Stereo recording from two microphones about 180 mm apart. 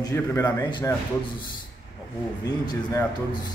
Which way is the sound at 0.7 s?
25° left (ahead or behind).